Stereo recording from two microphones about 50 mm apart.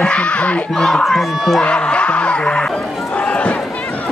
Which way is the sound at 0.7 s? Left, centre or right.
Centre.